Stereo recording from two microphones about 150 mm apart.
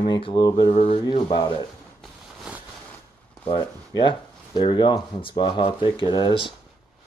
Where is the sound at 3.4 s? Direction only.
30° left (ahead or behind).